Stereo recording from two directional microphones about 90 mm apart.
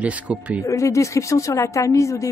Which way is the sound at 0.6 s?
35° left (ahead or behind).